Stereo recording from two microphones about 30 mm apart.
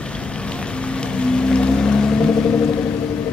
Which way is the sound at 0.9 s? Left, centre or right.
Left.